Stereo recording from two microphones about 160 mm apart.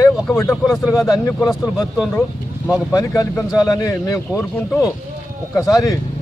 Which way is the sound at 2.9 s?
20° left (ahead or behind).